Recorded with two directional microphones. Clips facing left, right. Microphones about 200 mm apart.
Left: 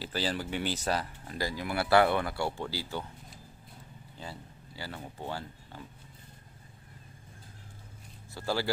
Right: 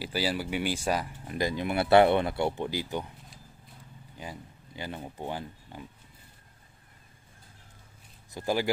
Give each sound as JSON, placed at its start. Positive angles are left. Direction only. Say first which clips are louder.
{"t": 0.0, "sound": "speech", "louder": "right 3 dB", "side_deg": -10}
{"t": 4.2, "sound": "speech", "louder": "right 2 dB", "side_deg": -15}
{"t": 8.4, "sound": "speech", "louder": "right 3 dB", "side_deg": -15}